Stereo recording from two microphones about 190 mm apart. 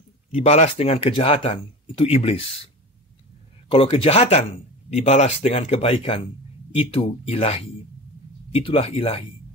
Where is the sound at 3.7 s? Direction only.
30° left (ahead or behind).